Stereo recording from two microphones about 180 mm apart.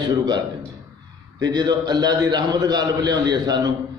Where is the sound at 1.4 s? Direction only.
20° right (ahead or behind).